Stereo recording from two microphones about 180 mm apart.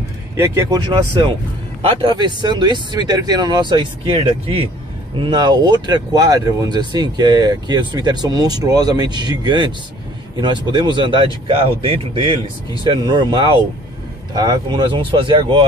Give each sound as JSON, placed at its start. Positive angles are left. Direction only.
{"t": 0.4, "sound": "speech", "side_deg": -15}
{"t": 1.8, "sound": "speech", "side_deg": -25}